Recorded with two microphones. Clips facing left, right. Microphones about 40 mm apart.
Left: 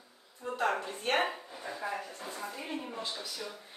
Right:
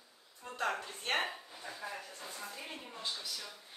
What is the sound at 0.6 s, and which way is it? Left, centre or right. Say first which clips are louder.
Speech: left 4 dB; left.